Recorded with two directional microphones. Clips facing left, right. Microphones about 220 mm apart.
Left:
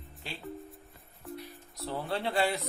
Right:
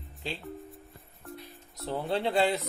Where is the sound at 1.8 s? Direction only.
15° right (ahead or behind).